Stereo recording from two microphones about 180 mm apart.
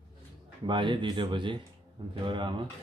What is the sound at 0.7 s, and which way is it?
Speech, 25° right (ahead or behind).